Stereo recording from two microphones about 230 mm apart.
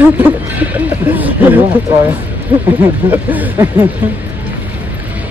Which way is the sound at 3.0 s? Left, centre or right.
Centre.